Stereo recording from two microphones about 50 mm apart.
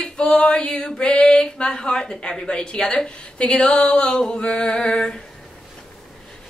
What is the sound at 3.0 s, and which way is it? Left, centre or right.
Speech, centre.